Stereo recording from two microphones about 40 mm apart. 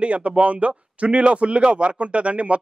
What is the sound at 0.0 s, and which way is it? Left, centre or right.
A man's voice, right.